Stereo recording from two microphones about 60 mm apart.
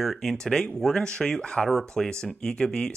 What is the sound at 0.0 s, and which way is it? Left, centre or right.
Speech, centre.